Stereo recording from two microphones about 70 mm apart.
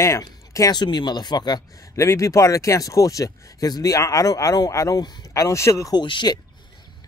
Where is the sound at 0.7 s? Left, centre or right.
Left.